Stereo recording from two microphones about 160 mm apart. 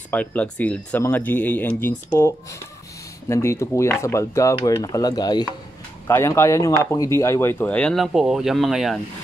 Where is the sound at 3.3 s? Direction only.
15° left (ahead or behind); by 9.0 s centre (ahead or behind).